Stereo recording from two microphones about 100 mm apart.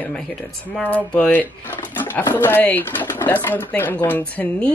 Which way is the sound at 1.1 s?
15° left (ahead or behind).